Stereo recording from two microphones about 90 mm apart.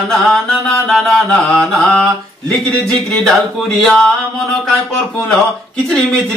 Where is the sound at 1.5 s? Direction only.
10° left (ahead or behind).